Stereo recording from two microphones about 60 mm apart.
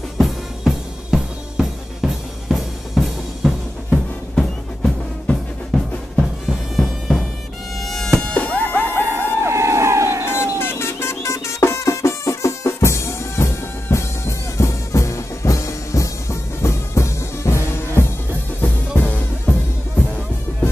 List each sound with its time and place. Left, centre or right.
0.2 s drum kit: centre
6.8 s music: centre
7.9 s mosquito: centre
8.2 s music: left
9.1 s crowd: right
10.3 s music: left
18.6 s music: left